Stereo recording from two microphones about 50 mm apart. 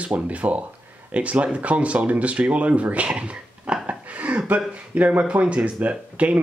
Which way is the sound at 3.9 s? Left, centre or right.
Right.